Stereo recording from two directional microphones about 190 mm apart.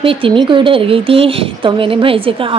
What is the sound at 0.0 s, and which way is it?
A woman's voice, 30° right (ahead or behind).